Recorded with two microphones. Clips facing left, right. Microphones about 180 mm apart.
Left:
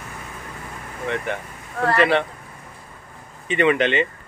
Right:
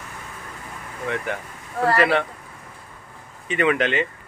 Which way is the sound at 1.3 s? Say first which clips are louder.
Even; 5° right (ahead or behind).